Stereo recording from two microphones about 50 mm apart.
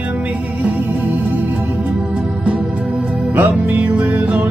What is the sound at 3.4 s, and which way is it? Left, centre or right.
Music, right.